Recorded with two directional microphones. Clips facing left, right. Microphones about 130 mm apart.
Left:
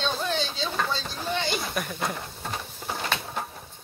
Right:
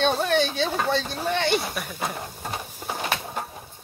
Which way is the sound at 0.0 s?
65° right (ahead or behind).